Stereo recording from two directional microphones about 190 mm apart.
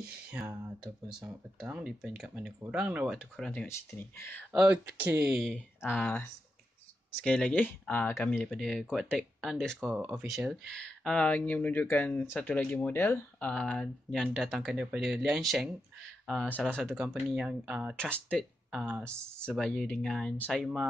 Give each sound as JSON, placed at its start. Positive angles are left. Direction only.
{"t": 1.6, "sound": "speech", "side_deg": 0}
{"t": 4.5, "sound": "speech", "side_deg": -10}
{"t": 7.2, "sound": "speech", "side_deg": 5}
{"t": 9.8, "sound": "speech", "side_deg": -15}
{"t": 10.1, "sound": "speech", "side_deg": 0}
{"t": 17.9, "sound": "speech", "side_deg": 5}